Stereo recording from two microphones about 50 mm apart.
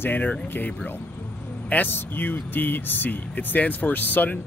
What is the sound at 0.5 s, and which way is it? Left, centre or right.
Speech, left.